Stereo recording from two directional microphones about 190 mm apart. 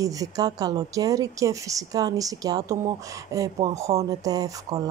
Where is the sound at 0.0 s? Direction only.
20° right (ahead or behind).